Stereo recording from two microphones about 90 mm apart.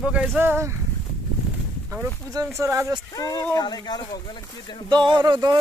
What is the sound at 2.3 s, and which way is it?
Speech, 35° right (ahead or behind).